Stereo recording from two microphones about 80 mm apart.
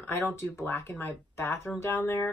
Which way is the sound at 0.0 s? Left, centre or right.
Left.